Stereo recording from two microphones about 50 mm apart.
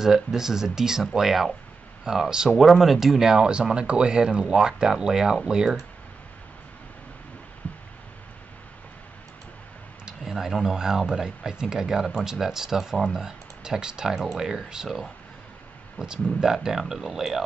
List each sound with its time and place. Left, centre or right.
0.0 s speech: centre
2.6 s speech: centre
7.6 s a sound: left
10.2 s speech: centre